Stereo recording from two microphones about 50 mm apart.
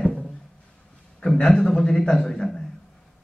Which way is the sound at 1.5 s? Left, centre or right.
Left.